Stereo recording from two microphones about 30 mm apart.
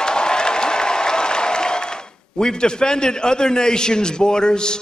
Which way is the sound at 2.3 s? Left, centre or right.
Left.